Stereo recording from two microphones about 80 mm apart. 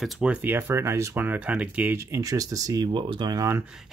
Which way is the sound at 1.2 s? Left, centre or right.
Centre.